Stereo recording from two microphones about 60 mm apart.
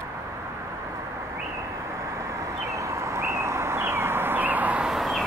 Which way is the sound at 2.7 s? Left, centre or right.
Right.